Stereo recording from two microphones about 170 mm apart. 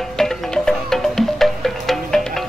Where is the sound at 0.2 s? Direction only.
Centre (ahead or behind).